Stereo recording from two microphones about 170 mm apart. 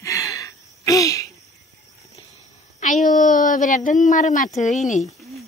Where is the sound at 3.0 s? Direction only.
50° left (ahead or behind).